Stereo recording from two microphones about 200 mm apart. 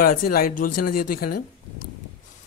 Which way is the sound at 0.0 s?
45° left (ahead or behind).